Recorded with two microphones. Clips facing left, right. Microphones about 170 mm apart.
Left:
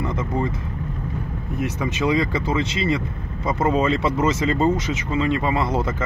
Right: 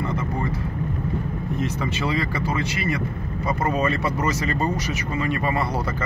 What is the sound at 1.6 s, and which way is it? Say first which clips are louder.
Speech: left 4 dB; 15° left (ahead or behind).